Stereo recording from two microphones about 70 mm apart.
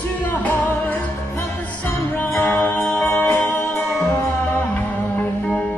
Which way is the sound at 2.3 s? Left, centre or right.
Left.